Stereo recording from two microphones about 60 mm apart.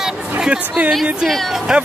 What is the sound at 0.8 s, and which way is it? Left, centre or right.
Speech, centre.